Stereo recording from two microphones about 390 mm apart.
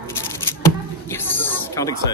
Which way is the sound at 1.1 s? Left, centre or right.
Centre.